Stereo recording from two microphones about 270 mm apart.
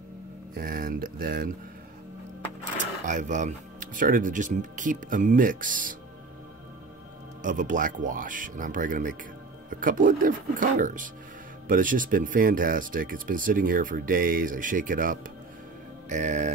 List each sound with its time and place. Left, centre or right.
0.6 s speech: right
2.8 s speech: right
7.4 s speech: right